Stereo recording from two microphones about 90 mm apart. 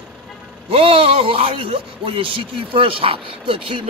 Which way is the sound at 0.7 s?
90° right.